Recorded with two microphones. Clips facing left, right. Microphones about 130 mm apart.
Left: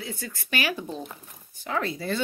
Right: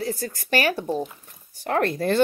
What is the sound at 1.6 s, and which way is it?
Speech, 60° right (ahead or behind).